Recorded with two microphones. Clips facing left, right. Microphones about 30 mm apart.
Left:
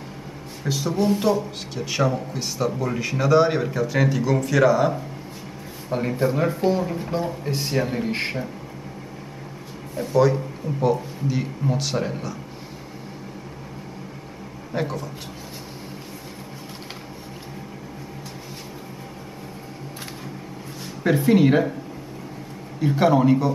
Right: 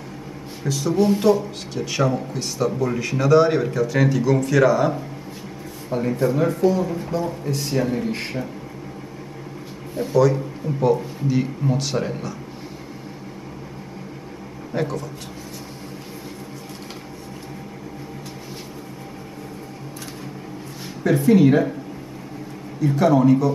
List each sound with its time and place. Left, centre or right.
0.7 s speech: centre
5.9 s speech: centre
7.1 s a man's voice: left
10.1 s speech: centre
10.8 s speech: centre
14.7 s a man's voice: centre
21.0 s speech: centre
22.8 s a man's voice: centre